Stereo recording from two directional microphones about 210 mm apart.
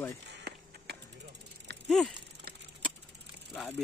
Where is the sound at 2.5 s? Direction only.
50° right (ahead or behind).